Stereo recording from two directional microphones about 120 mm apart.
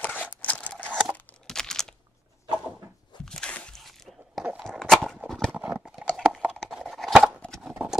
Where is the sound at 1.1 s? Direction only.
5° left (ahead or behind).